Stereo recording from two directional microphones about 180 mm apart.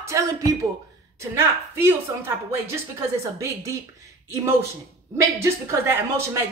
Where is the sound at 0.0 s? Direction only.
15° right (ahead or behind).